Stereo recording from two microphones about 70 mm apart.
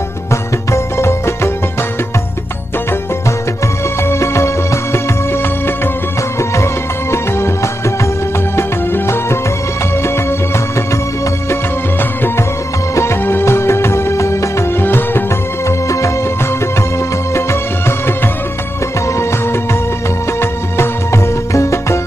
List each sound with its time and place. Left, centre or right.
0.3 s music: left
4.0 s music: left
12.0 s music: left
17.3 s music: left